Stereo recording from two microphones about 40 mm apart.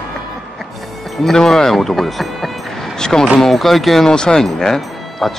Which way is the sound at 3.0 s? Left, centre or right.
Centre.